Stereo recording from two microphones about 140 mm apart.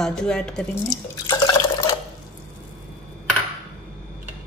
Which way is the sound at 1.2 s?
25° left (ahead or behind).